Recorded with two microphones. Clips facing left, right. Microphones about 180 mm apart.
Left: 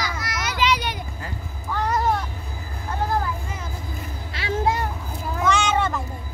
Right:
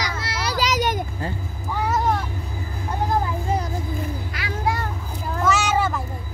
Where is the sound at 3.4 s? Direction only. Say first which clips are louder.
Right 10 dB; 35° right (ahead or behind).